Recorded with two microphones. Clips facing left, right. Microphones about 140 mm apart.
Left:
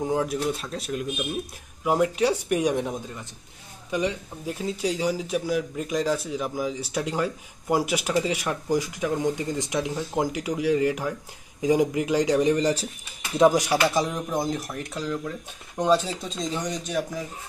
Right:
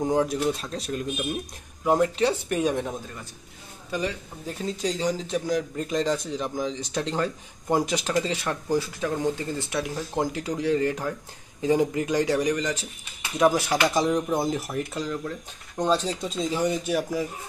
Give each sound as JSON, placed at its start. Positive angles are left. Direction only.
{"t": 0.0, "sound": "speech", "side_deg": 0}
{"t": 13.4, "sound": "speech", "side_deg": 15}
{"t": 13.7, "sound": "speech", "side_deg": 0}